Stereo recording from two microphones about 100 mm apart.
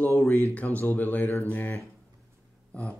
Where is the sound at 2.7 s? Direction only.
10° left (ahead or behind).